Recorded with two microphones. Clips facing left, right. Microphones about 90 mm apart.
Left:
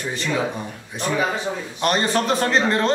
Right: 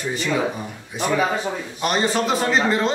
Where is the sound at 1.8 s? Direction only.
5° right (ahead or behind).